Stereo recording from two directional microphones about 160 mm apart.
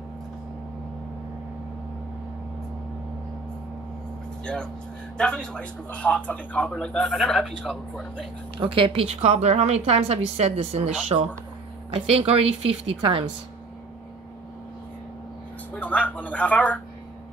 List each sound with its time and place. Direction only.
5.1 s speech: 5° left (ahead or behind)
8.5 s a woman's voice: 35° right (ahead or behind)
15.7 s speech: 10° left (ahead or behind)